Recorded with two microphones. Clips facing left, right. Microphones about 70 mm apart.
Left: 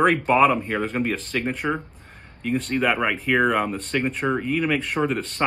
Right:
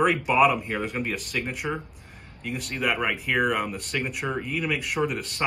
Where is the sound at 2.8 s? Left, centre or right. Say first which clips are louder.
Even; left.